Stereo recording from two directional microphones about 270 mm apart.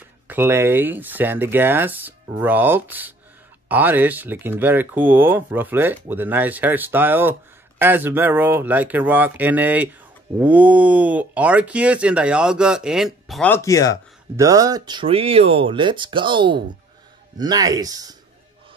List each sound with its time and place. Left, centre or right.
0.3 s speech: centre
14.3 s speech: centre